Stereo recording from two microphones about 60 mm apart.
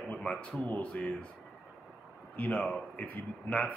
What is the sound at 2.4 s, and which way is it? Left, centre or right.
A man's voice, left.